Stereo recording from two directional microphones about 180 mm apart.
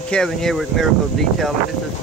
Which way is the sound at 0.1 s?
5° left (ahead or behind).